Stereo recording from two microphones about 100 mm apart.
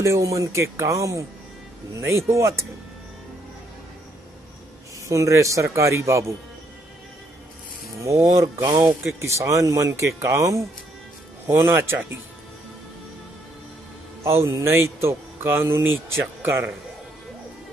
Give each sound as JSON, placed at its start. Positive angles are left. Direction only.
{"t": 0.0, "sound": "speech", "side_deg": -30}
{"t": 5.0, "sound": "speech", "side_deg": -30}
{"t": 8.0, "sound": "speech", "side_deg": -30}
{"t": 14.2, "sound": "speech", "side_deg": -25}